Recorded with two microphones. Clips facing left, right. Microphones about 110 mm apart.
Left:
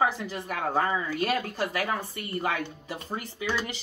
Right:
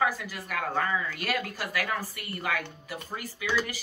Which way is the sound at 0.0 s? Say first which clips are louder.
Left 2 dB; 30° left (ahead or behind).